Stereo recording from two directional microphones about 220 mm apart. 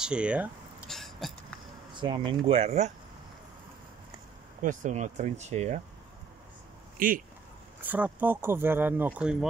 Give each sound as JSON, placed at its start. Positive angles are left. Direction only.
{"t": 0.0, "sound": "a sound", "side_deg": -5}
{"t": 2.0, "sound": "speech", "side_deg": -20}
{"t": 4.6, "sound": "speech", "side_deg": -35}
{"t": 7.0, "sound": "speech", "side_deg": -40}
{"t": 7.8, "sound": "speech", "side_deg": -5}